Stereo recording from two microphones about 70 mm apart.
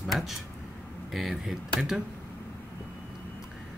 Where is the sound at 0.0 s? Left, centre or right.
Centre.